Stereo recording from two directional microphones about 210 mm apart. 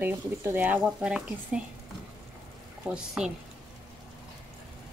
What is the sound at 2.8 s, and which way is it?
Speech, 5° right (ahead or behind).